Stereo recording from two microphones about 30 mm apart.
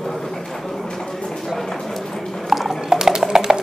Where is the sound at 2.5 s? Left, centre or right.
Centre.